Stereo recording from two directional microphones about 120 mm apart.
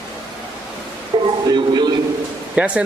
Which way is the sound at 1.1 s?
45° right (ahead or behind).